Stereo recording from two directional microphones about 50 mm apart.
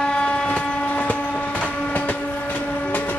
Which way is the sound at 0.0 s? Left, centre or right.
Centre.